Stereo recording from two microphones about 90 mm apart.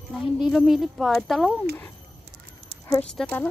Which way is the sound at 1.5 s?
20° left (ahead or behind).